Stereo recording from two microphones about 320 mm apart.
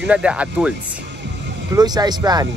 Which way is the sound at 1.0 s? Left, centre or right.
Right.